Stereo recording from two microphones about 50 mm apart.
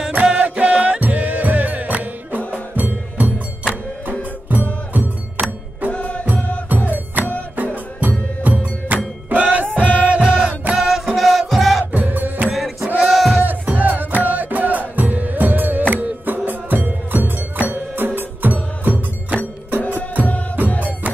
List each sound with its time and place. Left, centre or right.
0.1 s music: right
5.9 s music: left
6.7 s music: right
9.8 s music: left
10.1 s music: right
10.7 s music: centre
11.9 s music: right
12.4 s music: centre
13.4 s music: right